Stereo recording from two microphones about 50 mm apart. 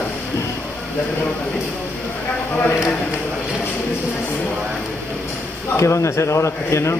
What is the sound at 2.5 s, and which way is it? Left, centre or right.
Speech, left.